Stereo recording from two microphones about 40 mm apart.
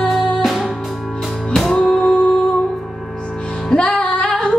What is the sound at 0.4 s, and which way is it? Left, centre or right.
Music, centre.